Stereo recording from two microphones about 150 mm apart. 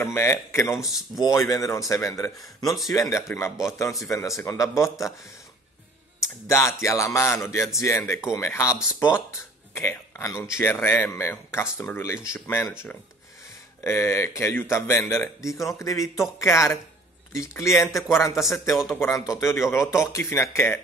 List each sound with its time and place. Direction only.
0.0 s a man's voice: 15° left (ahead or behind)
0.7 s speech: centre (ahead or behind)
1.2 s speech: 20° left (ahead or behind)
6.4 s a man's voice: 20° left (ahead or behind)
8.7 s speech: 5° right (ahead or behind)
9.8 s a man's voice: 15° left (ahead or behind)
13.8 s a man's voice: 20° left (ahead or behind)
17.9 s speech: centre (ahead or behind)
18.2 s a man's voice: 20° left (ahead or behind)